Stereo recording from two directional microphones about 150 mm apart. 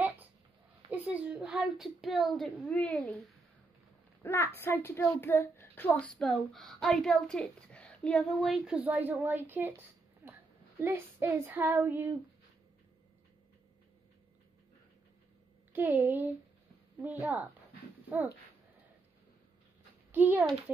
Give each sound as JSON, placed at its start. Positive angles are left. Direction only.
{"t": 1.0, "sound": "a woman's voice", "side_deg": -10}
{"t": 4.2, "sound": "a woman's voice", "side_deg": 15}
{"t": 15.7, "sound": "speech", "side_deg": -15}
{"t": 20.1, "sound": "a child's voice", "side_deg": -10}